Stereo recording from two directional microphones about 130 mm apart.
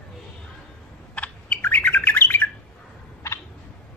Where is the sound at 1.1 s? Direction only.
10° left (ahead or behind).